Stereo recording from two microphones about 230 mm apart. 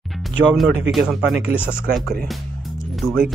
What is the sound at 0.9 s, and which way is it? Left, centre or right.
Speech, centre.